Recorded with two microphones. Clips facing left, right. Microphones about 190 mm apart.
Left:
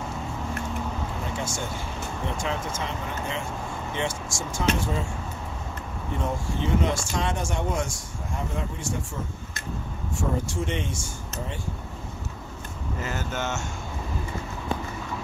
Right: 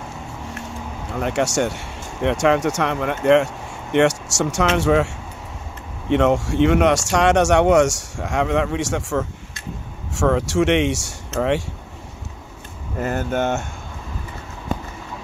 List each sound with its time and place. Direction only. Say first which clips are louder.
1.2 s speech: right 16 dB; 75° right (ahead or behind)
13.0 s speech: right 10 dB; 55° right (ahead or behind)